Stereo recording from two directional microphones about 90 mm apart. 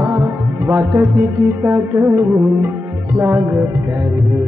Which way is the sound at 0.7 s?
25° right (ahead or behind).